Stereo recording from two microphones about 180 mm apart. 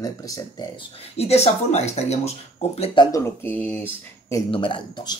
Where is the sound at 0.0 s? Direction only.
20° left (ahead or behind).